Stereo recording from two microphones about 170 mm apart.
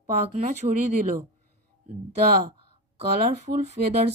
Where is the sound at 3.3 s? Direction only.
45° right (ahead or behind).